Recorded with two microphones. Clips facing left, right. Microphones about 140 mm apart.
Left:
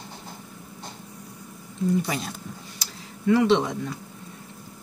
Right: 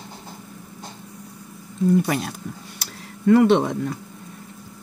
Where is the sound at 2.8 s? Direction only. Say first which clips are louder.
Right 6 dB; 50° right (ahead or behind).